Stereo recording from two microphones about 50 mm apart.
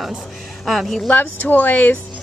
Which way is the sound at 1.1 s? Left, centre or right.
Left.